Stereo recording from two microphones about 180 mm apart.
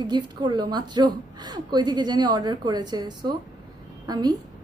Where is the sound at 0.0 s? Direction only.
25° right (ahead or behind).